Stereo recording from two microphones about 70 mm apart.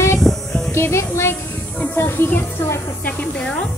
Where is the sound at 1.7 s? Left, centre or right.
Left.